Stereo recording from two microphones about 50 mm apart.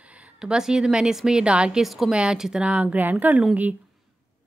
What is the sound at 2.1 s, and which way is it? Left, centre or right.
Speech, centre.